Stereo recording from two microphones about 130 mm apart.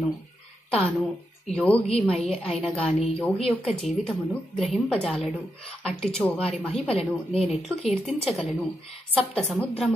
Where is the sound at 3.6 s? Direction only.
Centre (ahead or behind).